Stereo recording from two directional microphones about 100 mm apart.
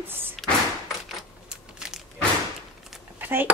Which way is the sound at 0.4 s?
Centre (ahead or behind).